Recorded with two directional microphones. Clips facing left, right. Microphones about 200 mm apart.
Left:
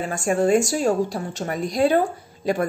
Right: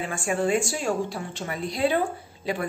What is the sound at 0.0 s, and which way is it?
A woman's voice, 40° left (ahead or behind).